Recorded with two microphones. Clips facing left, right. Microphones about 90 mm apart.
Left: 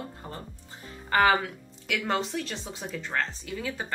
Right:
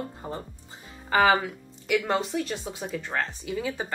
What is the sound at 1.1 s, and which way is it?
Speech, 5° right (ahead or behind).